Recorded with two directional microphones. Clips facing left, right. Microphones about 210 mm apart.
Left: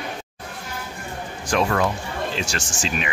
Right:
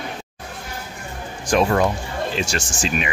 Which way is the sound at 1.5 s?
20° right (ahead or behind).